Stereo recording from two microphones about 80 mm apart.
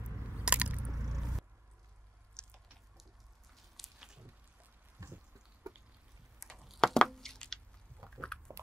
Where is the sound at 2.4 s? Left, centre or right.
Centre.